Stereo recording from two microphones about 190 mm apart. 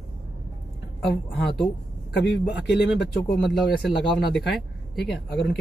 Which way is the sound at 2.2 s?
65° left (ahead or behind).